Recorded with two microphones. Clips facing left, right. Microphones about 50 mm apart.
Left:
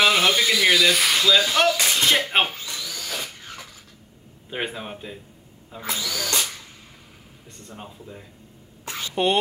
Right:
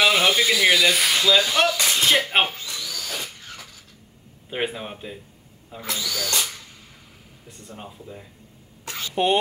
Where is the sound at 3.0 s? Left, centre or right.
Centre.